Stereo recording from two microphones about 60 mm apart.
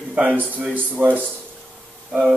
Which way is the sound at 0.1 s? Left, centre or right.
Right.